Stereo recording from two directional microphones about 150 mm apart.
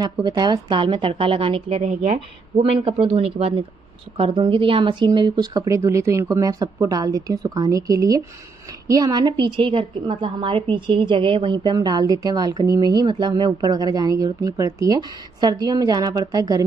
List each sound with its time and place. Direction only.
0.0 s a woman's voice: 30° right (ahead or behind)